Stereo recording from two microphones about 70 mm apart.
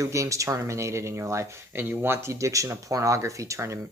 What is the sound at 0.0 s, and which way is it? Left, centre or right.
Speech, right.